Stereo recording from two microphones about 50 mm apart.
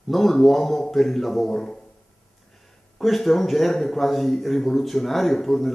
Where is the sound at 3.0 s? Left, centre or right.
Centre.